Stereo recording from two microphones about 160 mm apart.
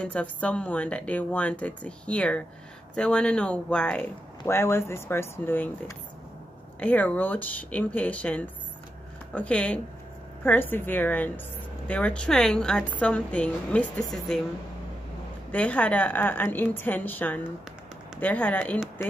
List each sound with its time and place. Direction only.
0.0 s a woman's voice: 10° left (ahead or behind)
15.5 s a woman's voice: 10° left (ahead or behind)